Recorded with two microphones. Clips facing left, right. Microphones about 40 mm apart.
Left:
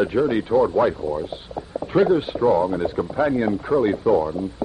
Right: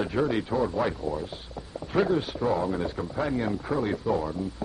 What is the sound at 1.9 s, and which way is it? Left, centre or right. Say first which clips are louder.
Speech: left 7 dB; centre.